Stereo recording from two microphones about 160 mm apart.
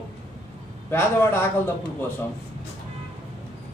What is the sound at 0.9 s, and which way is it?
A man's voice, 15° left (ahead or behind).